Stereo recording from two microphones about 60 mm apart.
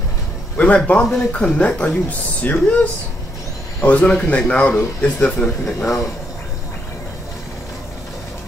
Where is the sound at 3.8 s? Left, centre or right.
Left.